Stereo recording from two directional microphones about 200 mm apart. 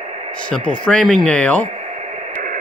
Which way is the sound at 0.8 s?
5° left (ahead or behind).